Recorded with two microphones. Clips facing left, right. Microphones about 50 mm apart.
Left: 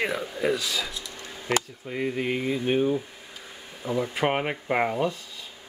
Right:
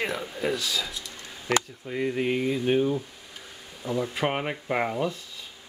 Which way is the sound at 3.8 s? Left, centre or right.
Left.